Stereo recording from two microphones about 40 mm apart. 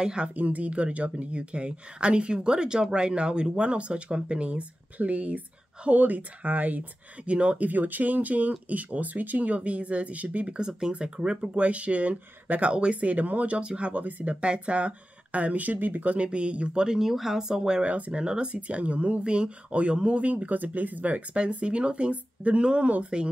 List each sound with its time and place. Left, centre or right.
0.0 s speech: right
0.4 s speech: right
7.2 s speech: right
7.6 s speech: right
14.0 s speech: right
14.3 s speech: right
16.3 s speech: right
17.0 s speech: centre
17.4 s speech: centre
17.8 s speech: right
18.2 s speech: right
18.5 s speech: right
22.1 s speech: right
22.6 s speech: right